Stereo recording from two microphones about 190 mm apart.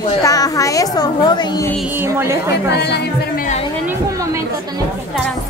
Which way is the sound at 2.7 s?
60° left (ahead or behind).